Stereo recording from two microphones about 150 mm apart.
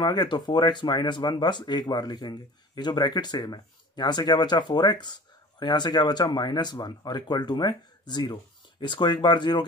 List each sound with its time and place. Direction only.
0.0 s speech: 30° left (ahead or behind)